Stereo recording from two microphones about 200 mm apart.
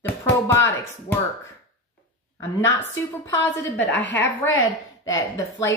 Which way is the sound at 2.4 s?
15° left (ahead or behind).